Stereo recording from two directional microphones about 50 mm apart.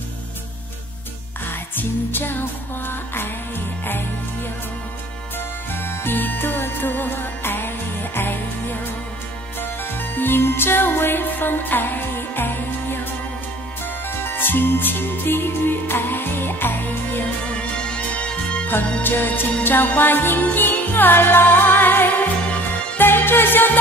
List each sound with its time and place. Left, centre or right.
1.8 s music: left
5.7 s music: left
9.9 s music: left
14.2 s music: left
17.5 s music: left
19.0 s music: left